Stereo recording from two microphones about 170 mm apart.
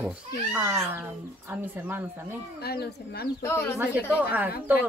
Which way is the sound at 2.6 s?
70° left (ahead or behind).